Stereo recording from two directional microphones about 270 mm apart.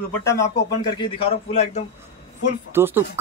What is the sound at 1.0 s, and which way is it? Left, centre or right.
Speech, left.